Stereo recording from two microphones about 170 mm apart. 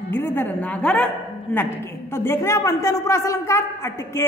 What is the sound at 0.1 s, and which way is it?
Speech, 10° left (ahead or behind).